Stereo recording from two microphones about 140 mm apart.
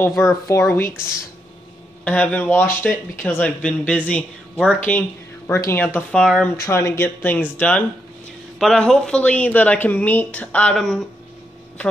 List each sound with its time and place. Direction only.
0.2 s speech: 25° left (ahead or behind)
0.9 s a woman's voice: 5° right (ahead or behind)
2.0 s speech: 10° left (ahead or behind)
5.9 s speech: 5° left (ahead or behind)
6.5 s speech: 20° left (ahead or behind); by 11.1 s 5° left (ahead or behind)